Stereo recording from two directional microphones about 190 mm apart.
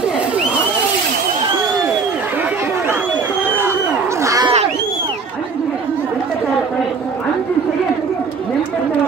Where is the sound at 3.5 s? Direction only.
15° right (ahead or behind).